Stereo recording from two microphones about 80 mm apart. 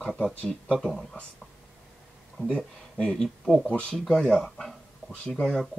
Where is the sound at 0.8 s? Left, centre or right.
Centre.